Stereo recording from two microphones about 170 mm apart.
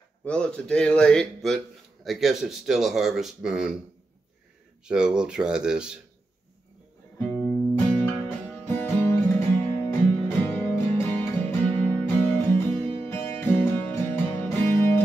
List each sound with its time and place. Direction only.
0.2 s speech: 5° left (ahead or behind)
4.8 s speech: 5° right (ahead or behind)
7.2 s music: 10° left (ahead or behind)